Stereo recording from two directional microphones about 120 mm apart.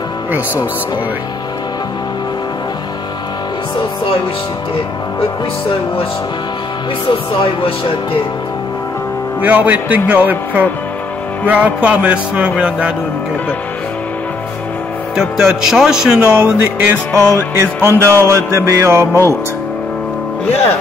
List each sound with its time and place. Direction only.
7.1 s speech: 50° left (ahead or behind)
9.4 s speech: 15° right (ahead or behind)
15.1 s speech: 5° right (ahead or behind)
17.8 s music: 20° right (ahead or behind)